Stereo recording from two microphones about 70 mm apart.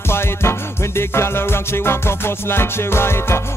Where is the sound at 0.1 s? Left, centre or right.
Left.